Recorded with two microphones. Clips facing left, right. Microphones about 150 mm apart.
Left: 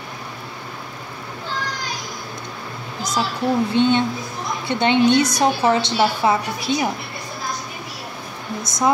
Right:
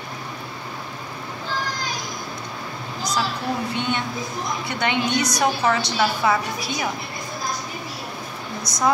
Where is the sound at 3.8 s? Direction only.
25° left (ahead or behind).